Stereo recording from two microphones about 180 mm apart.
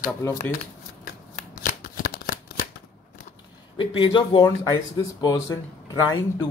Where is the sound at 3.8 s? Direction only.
30° left (ahead or behind).